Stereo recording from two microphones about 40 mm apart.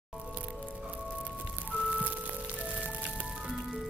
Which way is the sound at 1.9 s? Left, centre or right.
Right.